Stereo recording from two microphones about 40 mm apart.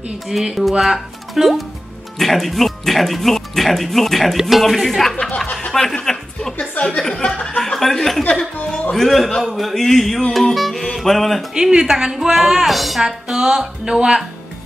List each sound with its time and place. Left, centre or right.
0.3 s speech: centre
7.1 s speech: left
7.4 s speech: centre
8.2 s speech: left
8.9 s speech: centre
11.5 s a woman's voice: centre